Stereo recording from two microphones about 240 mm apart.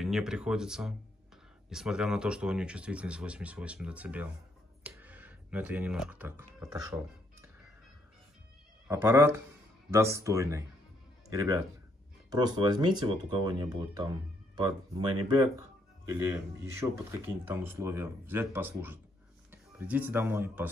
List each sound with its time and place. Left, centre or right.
0.0 s speech: centre
8.9 s speech: centre